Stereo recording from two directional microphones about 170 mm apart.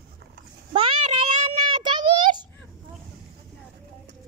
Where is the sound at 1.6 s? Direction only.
30° right (ahead or behind).